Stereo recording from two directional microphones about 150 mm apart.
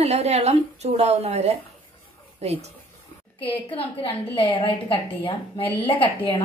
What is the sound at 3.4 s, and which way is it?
A woman's voice, 40° left (ahead or behind).